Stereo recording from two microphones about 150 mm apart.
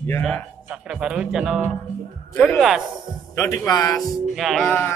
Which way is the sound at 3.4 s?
25° left (ahead or behind).